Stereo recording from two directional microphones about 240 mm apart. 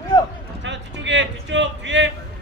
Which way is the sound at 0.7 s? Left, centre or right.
Right.